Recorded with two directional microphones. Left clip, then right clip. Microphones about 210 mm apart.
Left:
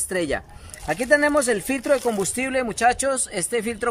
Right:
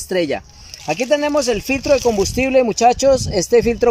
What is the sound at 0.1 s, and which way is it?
Speech, 10° right (ahead or behind).